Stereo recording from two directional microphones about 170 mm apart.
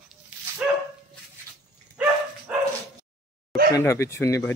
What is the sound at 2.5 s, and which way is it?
Bow-wow, 10° right (ahead or behind).